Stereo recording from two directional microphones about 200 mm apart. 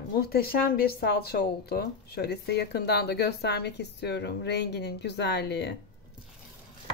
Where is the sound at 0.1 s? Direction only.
50° left (ahead or behind).